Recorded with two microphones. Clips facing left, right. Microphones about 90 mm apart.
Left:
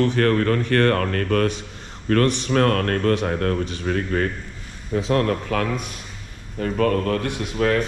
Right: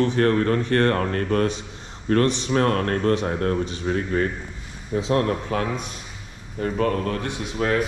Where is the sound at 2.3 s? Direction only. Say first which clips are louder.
Left 2 dB; 60° left (ahead or behind).